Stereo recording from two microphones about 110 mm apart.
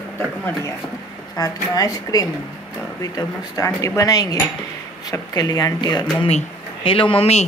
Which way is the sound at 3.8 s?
30° left (ahead or behind).